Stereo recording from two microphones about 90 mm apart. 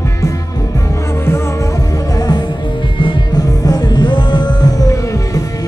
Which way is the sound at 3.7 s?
50° left (ahead or behind).